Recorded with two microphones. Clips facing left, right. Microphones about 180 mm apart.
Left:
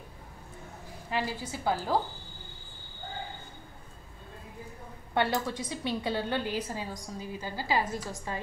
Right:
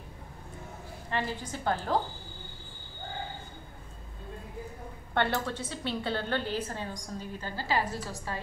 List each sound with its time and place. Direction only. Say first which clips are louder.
1.1 s a woman's voice: left 1 dB; 5° left (ahead or behind)
5.1 s a woman's voice: left 1 dB; 10° left (ahead or behind)